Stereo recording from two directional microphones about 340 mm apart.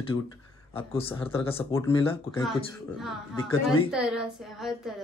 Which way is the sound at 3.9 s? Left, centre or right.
Centre.